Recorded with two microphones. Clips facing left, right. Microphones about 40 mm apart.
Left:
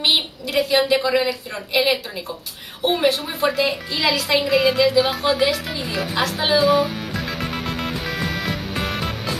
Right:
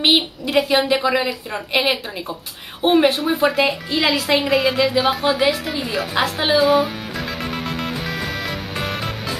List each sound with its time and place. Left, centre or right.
0.0 s a woman's voice: right
0.8 s speech: centre
1.7 s a woman's voice: right
4.5 s a woman's voice: centre
6.2 s a woman's voice: centre
6.6 s music: centre